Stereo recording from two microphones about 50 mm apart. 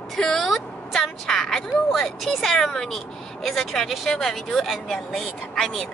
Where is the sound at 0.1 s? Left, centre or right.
Centre.